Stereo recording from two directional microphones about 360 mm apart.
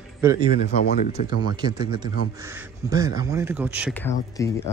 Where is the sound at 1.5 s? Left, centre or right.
Centre.